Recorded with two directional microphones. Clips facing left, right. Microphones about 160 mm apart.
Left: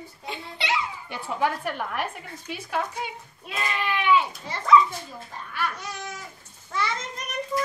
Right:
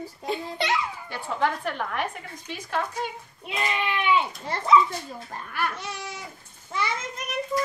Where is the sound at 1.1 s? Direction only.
10° left (ahead or behind).